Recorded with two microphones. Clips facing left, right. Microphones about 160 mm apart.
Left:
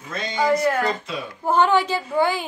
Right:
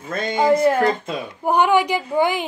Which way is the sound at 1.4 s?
15° right (ahead or behind).